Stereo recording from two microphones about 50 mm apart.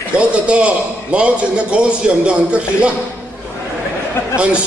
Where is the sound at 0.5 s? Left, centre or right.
Right.